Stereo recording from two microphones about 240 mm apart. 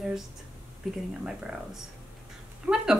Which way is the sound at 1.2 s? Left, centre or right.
Centre.